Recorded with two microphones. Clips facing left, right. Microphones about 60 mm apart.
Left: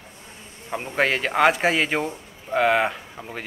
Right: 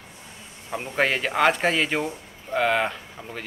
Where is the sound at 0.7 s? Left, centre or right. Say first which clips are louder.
Left 1 dB; centre.